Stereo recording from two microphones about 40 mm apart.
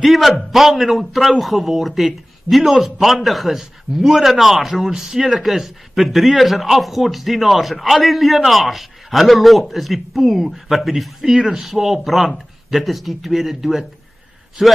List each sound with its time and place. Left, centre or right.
0.0 s speech: centre
11.3 s speech: centre
11.6 s a man's voice: centre